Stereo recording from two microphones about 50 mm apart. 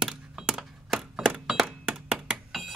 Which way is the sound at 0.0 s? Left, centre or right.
Centre.